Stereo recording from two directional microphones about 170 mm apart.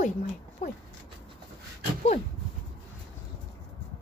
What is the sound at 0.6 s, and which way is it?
Speech, 45° left (ahead or behind).